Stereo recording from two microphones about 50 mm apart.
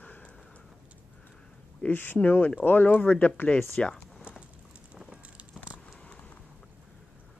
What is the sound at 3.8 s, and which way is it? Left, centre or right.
Speech, centre.